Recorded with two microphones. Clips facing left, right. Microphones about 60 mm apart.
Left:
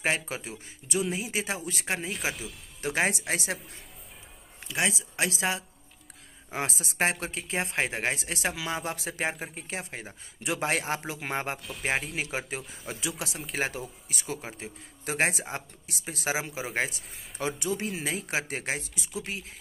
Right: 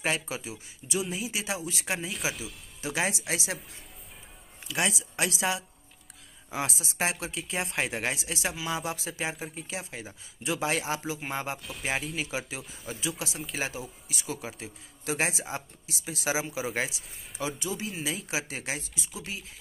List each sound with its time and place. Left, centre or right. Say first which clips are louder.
0.0 s speech: left 1 dB; left
4.6 s speech: even; left